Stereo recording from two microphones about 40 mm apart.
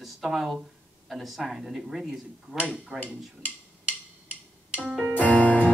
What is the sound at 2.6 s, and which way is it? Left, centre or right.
Speech, right.